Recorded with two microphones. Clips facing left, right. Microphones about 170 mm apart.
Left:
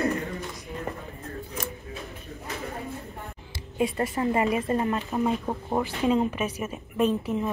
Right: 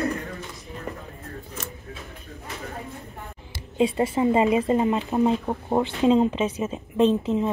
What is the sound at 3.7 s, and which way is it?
Speech, 25° right (ahead or behind).